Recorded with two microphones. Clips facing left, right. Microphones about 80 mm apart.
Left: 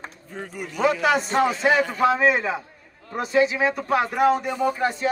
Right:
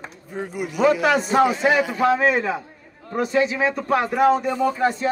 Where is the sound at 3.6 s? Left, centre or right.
Centre.